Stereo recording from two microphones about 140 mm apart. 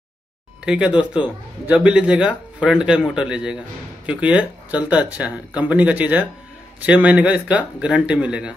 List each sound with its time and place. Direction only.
0.7 s a man's voice: 5° right (ahead or behind)